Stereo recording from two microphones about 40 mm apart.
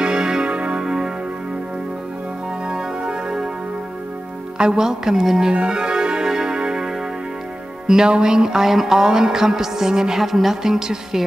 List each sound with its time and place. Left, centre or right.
0.0 s music: centre
0.5 s music: right
0.8 s music: centre
3.0 s music: right
4.6 s music: centre
5.5 s organ: right
7.8 s music: centre